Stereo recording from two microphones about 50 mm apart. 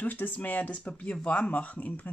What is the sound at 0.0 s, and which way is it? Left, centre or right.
Speech, left.